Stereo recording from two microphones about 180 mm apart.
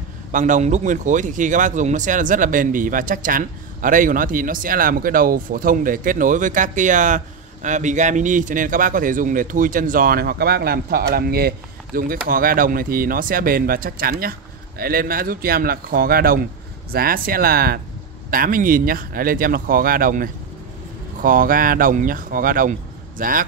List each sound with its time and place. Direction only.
0.3 s speech: 45° right (ahead or behind)